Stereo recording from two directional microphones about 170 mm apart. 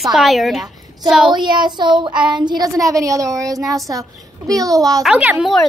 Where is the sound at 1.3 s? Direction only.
25° right (ahead or behind).